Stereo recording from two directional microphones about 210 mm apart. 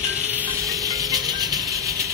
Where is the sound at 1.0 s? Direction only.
20° right (ahead or behind).